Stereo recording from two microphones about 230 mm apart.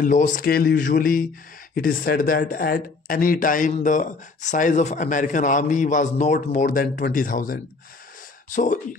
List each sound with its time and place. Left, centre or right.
0.0 s speech: left